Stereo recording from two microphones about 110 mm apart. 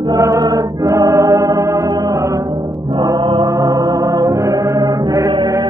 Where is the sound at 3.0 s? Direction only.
40° right (ahead or behind).